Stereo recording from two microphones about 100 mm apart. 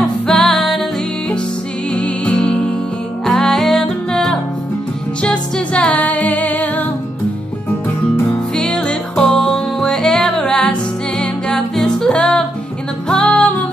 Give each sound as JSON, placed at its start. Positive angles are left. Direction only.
{"t": 0.3, "sound": "music", "side_deg": 5}
{"t": 2.0, "sound": "music", "side_deg": 10}
{"t": 8.5, "sound": "music", "side_deg": 10}